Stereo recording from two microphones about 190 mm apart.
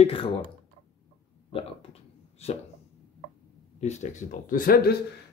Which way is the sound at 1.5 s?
30° left (ahead or behind).